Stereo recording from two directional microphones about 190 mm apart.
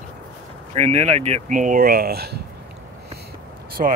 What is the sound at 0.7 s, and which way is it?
Speech, 35° right (ahead or behind).